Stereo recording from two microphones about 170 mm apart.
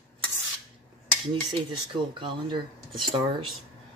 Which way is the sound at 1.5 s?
30° right (ahead or behind).